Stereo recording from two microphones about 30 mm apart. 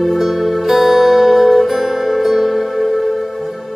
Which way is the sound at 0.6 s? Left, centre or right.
Centre.